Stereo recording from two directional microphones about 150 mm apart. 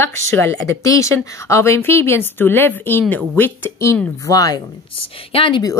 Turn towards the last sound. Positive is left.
turn(degrees=30)  # may be behind; listen again after turning